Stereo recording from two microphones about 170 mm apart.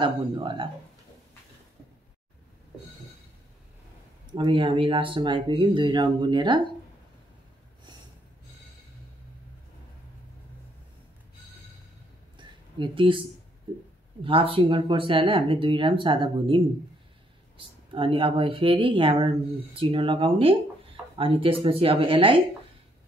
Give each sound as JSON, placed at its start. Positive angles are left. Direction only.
{"t": 0.0, "sound": "speech", "side_deg": -30}
{"t": 4.4, "sound": "speech", "side_deg": -30}
{"t": 12.4, "sound": "a sound", "side_deg": -30}
{"t": 14.2, "sound": "speech", "side_deg": -30}